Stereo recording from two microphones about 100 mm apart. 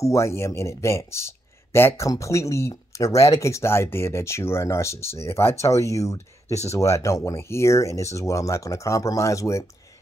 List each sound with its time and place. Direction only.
0.0 s speech: 30° left (ahead or behind)